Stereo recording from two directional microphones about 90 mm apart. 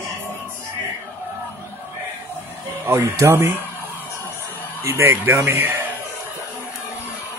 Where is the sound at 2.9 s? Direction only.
30° right (ahead or behind).